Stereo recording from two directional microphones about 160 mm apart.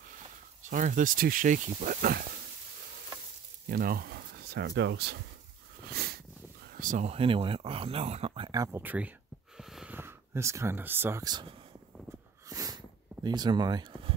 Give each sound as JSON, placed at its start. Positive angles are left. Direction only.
{"t": 0.7, "sound": "speech", "side_deg": -55}
{"t": 3.6, "sound": "speech", "side_deg": -70}
{"t": 5.9, "sound": "a sound", "side_deg": -75}
{"t": 6.7, "sound": "a sound", "side_deg": -55}
{"t": 7.1, "sound": "speech", "side_deg": -35}
{"t": 8.5, "sound": "speech", "side_deg": -25}
{"t": 8.8, "sound": "speech", "side_deg": -10}
{"t": 9.6, "sound": "snort", "side_deg": -5}
{"t": 9.9, "sound": "speech", "side_deg": -15}
{"t": 12.4, "sound": "a sound", "side_deg": -20}